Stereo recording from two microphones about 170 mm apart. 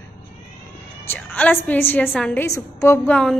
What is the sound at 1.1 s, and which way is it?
A woman's voice, 10° left (ahead or behind).